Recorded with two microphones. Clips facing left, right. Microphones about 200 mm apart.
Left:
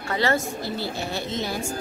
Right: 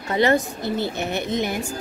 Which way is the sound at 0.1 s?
20° right (ahead or behind).